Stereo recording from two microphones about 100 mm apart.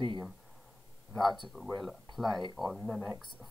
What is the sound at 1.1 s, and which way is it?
Speech, centre (ahead or behind).